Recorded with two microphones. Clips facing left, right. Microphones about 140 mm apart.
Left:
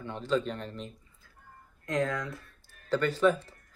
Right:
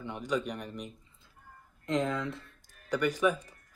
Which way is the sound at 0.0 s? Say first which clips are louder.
Left 3 dB; 15° right (ahead or behind).